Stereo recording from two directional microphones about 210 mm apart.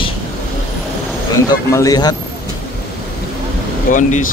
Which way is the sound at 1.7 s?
15° left (ahead or behind).